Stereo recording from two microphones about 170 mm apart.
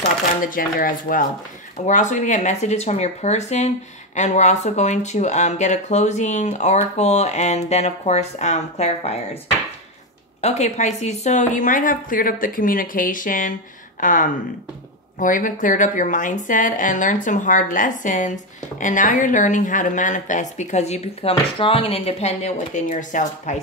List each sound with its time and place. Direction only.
0.4 s a woman's voice: 55° left (ahead or behind); by 9.4 s 40° left (ahead or behind)
10.4 s a woman's voice: 40° left (ahead or behind)